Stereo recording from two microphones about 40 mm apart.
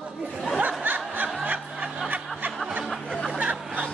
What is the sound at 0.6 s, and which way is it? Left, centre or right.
Snicker, right.